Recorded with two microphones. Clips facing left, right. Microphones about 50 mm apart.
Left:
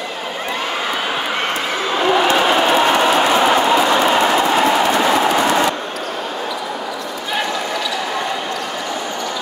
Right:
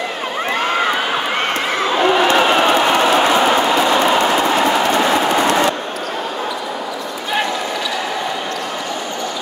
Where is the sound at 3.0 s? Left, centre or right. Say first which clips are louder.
Right 1 dB; centre.